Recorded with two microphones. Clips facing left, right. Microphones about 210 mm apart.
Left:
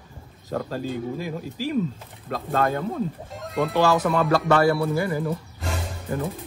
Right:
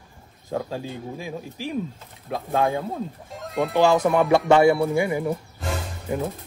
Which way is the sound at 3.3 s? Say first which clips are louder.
Right 3 dB; centre (ahead or behind).